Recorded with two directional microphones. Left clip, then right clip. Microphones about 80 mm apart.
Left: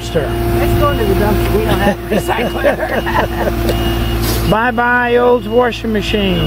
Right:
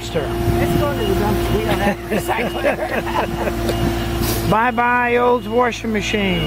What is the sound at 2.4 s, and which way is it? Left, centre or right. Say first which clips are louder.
Speech: left 5 dB; centre.